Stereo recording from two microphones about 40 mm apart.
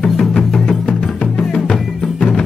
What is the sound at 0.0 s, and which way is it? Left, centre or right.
Music, centre.